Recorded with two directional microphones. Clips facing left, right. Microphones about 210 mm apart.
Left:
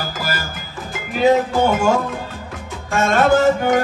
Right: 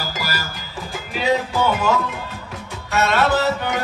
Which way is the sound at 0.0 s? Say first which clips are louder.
Left 2 dB; 50° left (ahead or behind).